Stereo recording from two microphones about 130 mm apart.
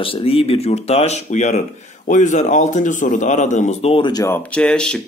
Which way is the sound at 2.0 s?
75° left (ahead or behind).